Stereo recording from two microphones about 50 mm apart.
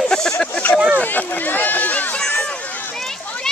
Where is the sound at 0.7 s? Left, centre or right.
Right.